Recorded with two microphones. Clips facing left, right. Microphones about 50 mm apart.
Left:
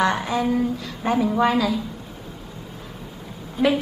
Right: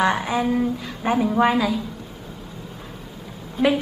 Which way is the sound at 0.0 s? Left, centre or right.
Centre.